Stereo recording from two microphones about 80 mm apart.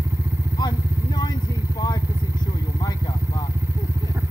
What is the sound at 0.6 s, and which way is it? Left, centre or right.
Vehicle, left.